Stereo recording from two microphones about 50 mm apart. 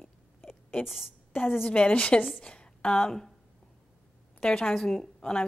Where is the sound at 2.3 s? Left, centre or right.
Left.